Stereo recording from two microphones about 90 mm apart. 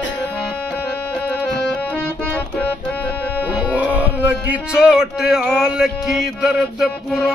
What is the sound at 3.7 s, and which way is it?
Music, 20° right (ahead or behind).